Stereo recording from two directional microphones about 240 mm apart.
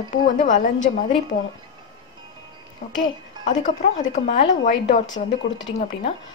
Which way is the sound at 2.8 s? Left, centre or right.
Left.